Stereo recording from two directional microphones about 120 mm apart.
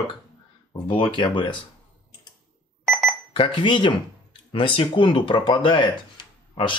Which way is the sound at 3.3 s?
45° left (ahead or behind).